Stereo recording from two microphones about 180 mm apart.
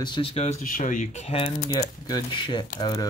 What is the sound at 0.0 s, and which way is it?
Speech, 30° left (ahead or behind).